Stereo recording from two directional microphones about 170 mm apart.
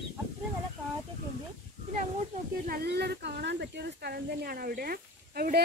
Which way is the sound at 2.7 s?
65° right (ahead or behind).